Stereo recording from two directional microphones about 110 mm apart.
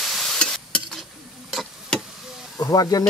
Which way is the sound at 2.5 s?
35° left (ahead or behind).